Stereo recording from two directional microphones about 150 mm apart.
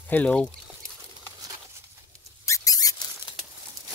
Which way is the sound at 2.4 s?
20° left (ahead or behind).